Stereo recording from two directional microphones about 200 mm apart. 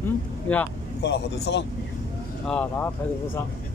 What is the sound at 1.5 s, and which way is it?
Speech, 65° left (ahead or behind).